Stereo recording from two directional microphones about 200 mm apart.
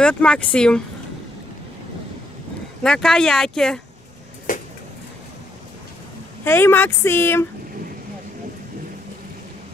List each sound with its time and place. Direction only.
0.0 s speech: 5° left (ahead or behind)
2.8 s speech: 5° left (ahead or behind)
4.5 s a sound: 40° left (ahead or behind)
6.4 s speech: 10° left (ahead or behind)